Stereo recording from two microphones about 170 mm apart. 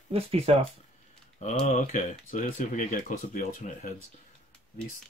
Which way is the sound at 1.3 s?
45° left (ahead or behind).